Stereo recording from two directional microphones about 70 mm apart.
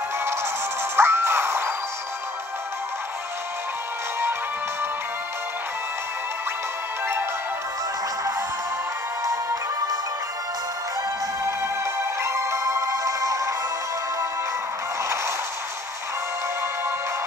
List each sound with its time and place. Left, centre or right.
0.9 s music: right
9.2 s music: right
11.4 s music: right